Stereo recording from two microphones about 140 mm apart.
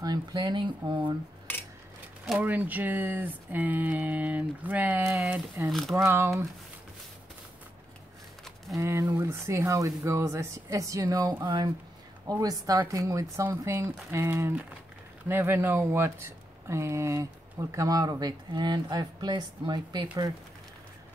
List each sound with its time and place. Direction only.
0.0 s speech: 30° right (ahead or behind)
2.2 s speech: 10° right (ahead or behind)
5.7 s speech: centre (ahead or behind)
5.9 s speech: 15° right (ahead or behind)
8.7 s speech: 20° right (ahead or behind)